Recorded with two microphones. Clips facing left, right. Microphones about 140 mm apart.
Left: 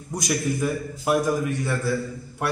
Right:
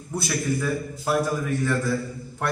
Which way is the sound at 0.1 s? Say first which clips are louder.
Left 1 dB; 15° left (ahead or behind).